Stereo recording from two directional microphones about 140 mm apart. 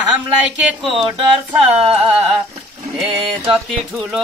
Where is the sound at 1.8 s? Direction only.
45° right (ahead or behind).